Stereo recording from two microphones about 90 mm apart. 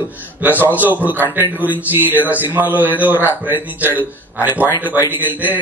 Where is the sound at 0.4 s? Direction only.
20° right (ahead or behind).